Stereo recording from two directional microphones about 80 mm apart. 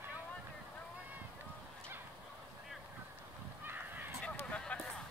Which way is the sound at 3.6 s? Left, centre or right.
Right.